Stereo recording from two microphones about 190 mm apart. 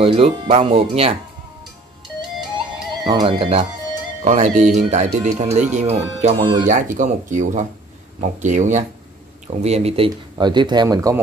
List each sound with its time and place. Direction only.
0.0 s speech: 30° right (ahead or behind)
3.0 s speech: 20° right (ahead or behind)
6.7 s speech: 40° right (ahead or behind); by 11.1 s 20° right (ahead or behind)